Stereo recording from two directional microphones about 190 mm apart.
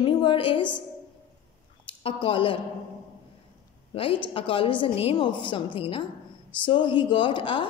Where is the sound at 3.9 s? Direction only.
30° left (ahead or behind).